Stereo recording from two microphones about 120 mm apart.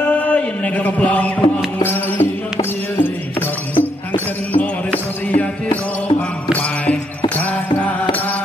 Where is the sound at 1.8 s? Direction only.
15° left (ahead or behind).